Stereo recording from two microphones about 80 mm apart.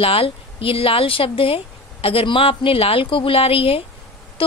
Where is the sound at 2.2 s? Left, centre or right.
Left.